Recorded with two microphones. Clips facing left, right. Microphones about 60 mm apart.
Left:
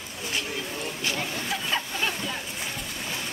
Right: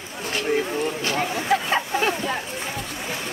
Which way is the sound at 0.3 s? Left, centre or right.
Right.